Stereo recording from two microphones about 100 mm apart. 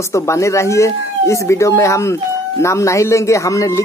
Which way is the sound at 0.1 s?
30° left (ahead or behind).